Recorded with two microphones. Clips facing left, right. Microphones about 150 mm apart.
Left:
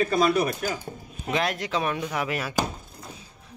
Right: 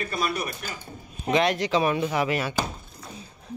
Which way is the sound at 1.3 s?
Centre (ahead or behind).